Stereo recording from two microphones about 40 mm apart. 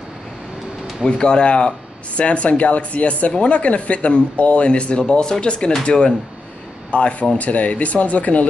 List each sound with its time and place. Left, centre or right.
1.1 s speech: left